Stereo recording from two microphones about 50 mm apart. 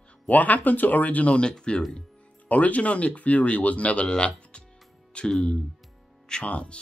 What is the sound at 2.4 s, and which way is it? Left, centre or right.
Speech, left.